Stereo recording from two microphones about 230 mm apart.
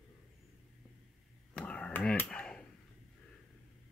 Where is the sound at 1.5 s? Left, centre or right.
Centre.